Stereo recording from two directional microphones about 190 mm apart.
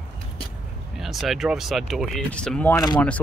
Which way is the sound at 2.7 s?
20° left (ahead or behind).